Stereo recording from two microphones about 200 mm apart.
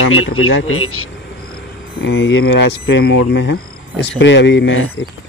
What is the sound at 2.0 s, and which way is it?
Speech, 65° left (ahead or behind).